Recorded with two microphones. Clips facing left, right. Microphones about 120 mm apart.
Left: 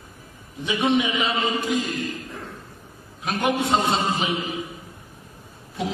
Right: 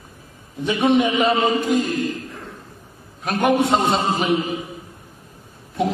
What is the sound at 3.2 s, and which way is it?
A man's voice, 55° right (ahead or behind).